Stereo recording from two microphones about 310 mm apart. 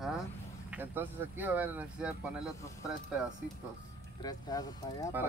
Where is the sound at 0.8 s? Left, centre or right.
Centre.